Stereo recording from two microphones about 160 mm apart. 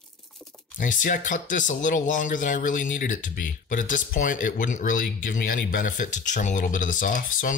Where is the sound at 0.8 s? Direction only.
55° left (ahead or behind).